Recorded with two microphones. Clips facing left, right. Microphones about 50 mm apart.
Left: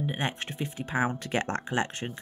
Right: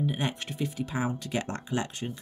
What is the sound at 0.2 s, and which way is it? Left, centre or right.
Speech, left.